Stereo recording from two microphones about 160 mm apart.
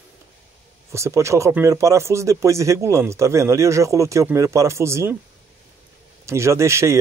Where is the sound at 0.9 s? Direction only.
20° right (ahead or behind).